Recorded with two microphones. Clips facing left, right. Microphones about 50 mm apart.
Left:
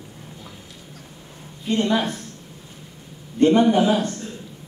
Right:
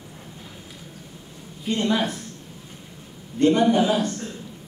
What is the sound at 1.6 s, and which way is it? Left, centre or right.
Speech, centre.